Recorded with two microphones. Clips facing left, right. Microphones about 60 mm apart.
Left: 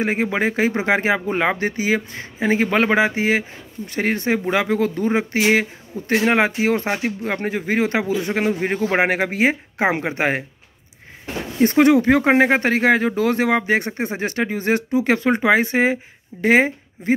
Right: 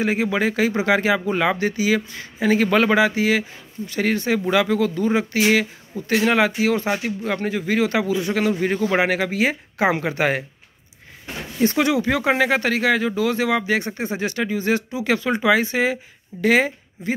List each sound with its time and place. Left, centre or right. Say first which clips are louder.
0.0 s speech: even; left
11.6 s speech: left 5 dB; left